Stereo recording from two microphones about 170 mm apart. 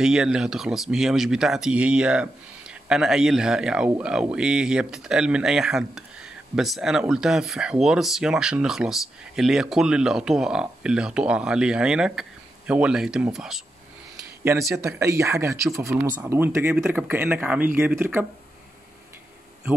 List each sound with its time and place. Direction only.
0.0 s speech: 5° right (ahead or behind)
14.8 s speech: 15° right (ahead or behind)